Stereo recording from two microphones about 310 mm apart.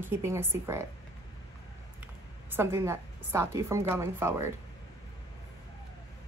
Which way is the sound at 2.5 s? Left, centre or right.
Centre.